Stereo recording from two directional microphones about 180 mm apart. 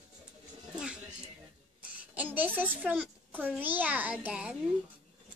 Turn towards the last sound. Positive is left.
turn(degrees=-5)  # may be behind; listen again after turning